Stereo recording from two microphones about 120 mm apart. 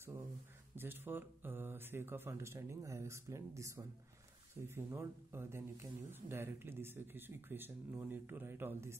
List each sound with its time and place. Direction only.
0.7 s speech: 15° right (ahead or behind)